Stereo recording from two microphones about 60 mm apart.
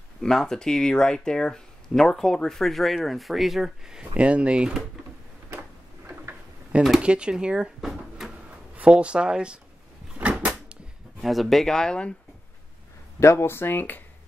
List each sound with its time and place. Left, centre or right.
0.2 s speech: centre
4.1 s speech: centre
5.5 s a sound: right
7.0 s speech: centre
10.3 s a sound: centre
11.1 s speech: centre
13.2 s speech: left